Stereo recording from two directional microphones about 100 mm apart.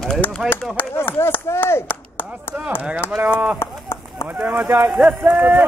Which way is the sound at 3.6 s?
25° left (ahead or behind).